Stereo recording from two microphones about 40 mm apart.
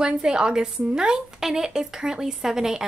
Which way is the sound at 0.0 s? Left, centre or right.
Centre.